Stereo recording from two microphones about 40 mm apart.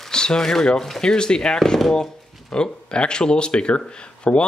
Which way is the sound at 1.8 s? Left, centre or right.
Centre.